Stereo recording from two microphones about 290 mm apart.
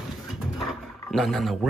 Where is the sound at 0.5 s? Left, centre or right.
Centre.